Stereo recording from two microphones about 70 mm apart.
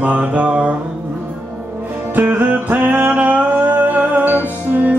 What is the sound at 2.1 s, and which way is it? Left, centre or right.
Music, right.